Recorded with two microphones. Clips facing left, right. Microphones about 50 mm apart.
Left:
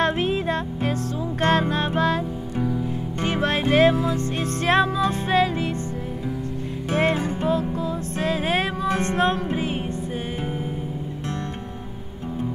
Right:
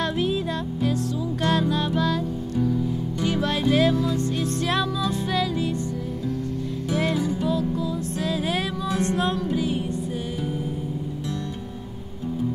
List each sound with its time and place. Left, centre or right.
0.0 s music: left
6.9 s music: left